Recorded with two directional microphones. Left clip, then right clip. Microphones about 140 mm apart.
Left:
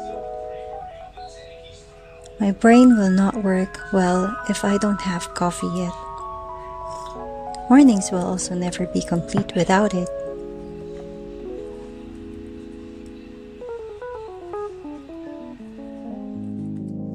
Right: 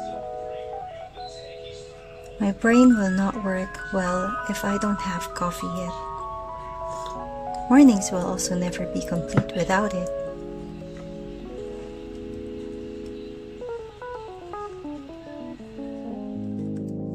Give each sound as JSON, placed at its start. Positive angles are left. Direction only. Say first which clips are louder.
{"t": 2.3, "sound": "speech", "louder": "left 5 dB", "side_deg": 40}
{"t": 4.2, "sound": "speech", "louder": "left 2 dB", "side_deg": 10}
{"t": 4.5, "sound": "speech", "louder": "left 4 dB", "side_deg": 35}
{"t": 7.0, "sound": "music", "louder": "even", "side_deg": 0}
{"t": 7.7, "sound": "speech", "louder": "left 2 dB", "side_deg": 35}